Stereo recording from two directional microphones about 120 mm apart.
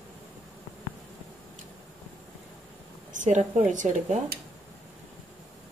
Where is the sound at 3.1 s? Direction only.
90° right.